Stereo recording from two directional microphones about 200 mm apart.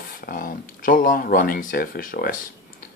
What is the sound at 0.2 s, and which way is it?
Speech, 45° left (ahead or behind).